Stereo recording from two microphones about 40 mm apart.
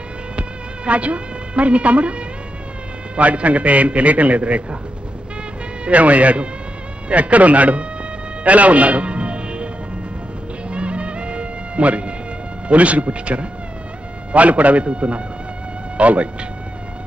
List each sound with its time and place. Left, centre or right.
0.4 s a woman's voice: right
5.9 s a man's voice: right
8.5 s music: right
10.7 s music: right
12.6 s a man's voice: right